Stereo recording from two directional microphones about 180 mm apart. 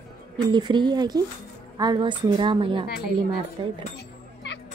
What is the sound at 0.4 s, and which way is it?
A woman's voice, 25° right (ahead or behind).